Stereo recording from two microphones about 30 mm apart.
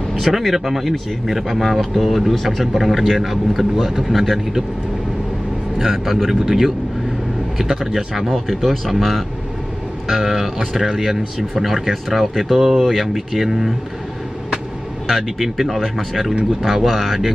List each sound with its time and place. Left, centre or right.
0.1 s a man's voice: centre
5.8 s speech: centre
8.3 s a man's voice: centre
15.1 s speech: centre